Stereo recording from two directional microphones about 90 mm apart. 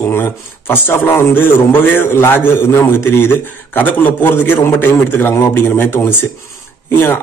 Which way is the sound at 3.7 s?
20° left (ahead or behind).